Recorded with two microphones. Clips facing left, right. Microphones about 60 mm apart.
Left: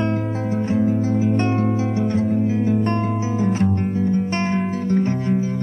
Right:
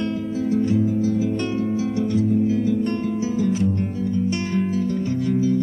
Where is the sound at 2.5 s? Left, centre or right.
Left.